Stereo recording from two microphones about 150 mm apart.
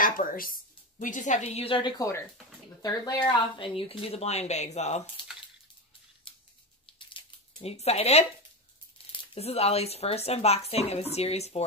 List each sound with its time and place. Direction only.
0.0 s a woman's voice: 65° left (ahead or behind); by 5.0 s 50° left (ahead or behind)
6.3 s scissors: 35° left (ahead or behind)
7.0 s a sound: 35° left (ahead or behind)
8.9 s speech: 35° left (ahead or behind)